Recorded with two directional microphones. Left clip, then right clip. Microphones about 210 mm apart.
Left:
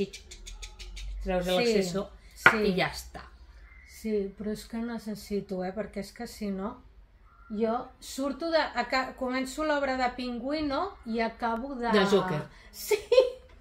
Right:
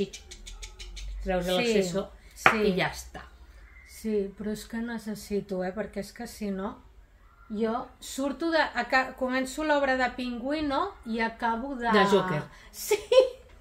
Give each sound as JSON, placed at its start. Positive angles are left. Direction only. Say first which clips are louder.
{"t": 0.0, "sound": "bird", "louder": "right 1 dB", "side_deg": 5}
{"t": 1.8, "sound": "speech", "louder": "right 2 dB", "side_deg": 5}
{"t": 4.0, "sound": "a woman's voice", "louder": "right 1 dB", "side_deg": -15}
{"t": 11.9, "sound": "speech", "louder": "right 2 dB", "side_deg": 5}
{"t": 12.8, "sound": "a woman's voice", "louder": "right 1 dB", "side_deg": -15}